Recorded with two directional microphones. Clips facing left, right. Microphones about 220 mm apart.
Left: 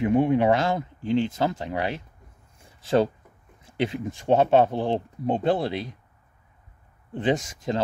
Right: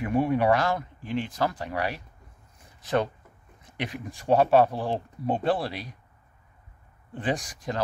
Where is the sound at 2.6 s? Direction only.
25° left (ahead or behind).